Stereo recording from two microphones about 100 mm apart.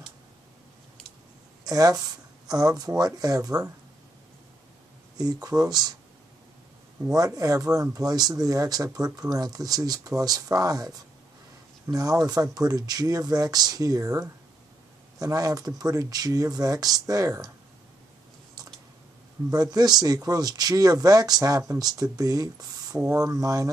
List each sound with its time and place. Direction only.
1.6 s speech: 35° right (ahead or behind)
5.1 s speech: 40° right (ahead or behind)
7.1 s speech: 35° right (ahead or behind)
19.5 s speech: 40° right (ahead or behind)